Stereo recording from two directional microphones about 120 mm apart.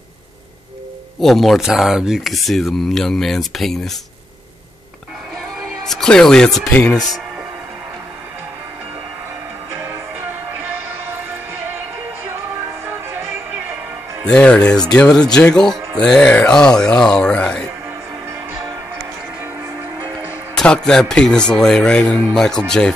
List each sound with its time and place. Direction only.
1.2 s speech: centre (ahead or behind)
5.6 s a man's voice: centre (ahead or behind)
12.8 s music: 20° right (ahead or behind)
14.2 s a man's voice: 10° left (ahead or behind)
20.5 s a man's voice: 5° left (ahead or behind)